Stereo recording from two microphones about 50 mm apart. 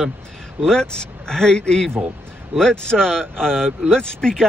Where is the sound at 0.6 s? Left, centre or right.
Centre.